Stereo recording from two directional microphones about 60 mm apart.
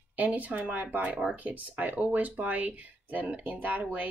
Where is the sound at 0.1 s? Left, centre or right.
Right.